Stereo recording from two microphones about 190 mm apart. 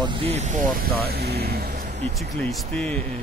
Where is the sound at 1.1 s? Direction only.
55° right (ahead or behind).